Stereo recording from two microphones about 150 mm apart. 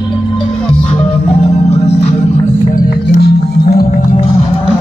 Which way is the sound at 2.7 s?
75° left (ahead or behind).